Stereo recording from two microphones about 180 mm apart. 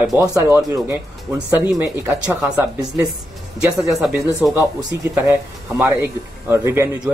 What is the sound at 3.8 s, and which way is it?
Speech, centre (ahead or behind).